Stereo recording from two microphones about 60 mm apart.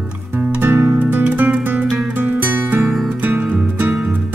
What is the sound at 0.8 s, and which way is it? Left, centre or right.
Music, right.